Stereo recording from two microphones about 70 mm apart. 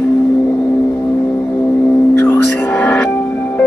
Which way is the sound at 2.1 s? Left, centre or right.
Left.